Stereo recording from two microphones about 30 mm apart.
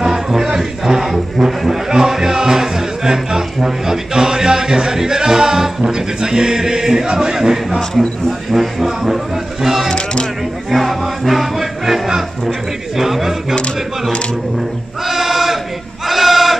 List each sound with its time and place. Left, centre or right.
0.0 s a man's voice: centre
8.3 s speech: centre
10.7 s music: centre
12.9 s a sound: centre
15.0 s choir: centre
16.1 s a sound: centre